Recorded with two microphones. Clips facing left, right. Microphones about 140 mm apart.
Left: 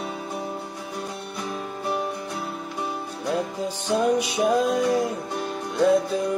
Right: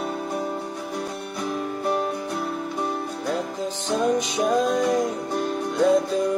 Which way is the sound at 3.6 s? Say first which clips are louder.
Even; 10° left (ahead or behind).